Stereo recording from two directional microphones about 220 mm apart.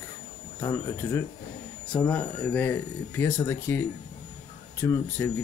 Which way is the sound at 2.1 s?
10° left (ahead or behind).